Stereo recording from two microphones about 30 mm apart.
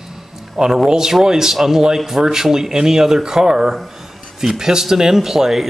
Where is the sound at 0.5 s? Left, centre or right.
Centre.